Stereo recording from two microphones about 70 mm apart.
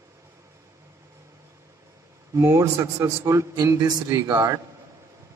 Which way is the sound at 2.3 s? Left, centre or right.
Right.